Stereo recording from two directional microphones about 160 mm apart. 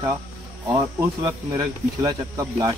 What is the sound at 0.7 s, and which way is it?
Speech, 25° right (ahead or behind).